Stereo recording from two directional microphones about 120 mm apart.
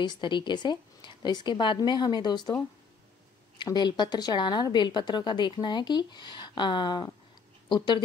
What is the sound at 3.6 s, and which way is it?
A woman's voice, 40° left (ahead or behind).